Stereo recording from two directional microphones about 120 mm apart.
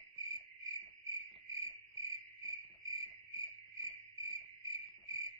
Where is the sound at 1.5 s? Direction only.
25° right (ahead or behind).